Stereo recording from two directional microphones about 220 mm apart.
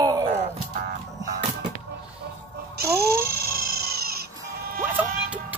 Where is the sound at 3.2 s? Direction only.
45° right (ahead or behind).